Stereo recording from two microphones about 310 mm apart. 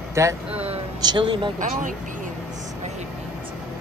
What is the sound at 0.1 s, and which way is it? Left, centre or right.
Speech, centre.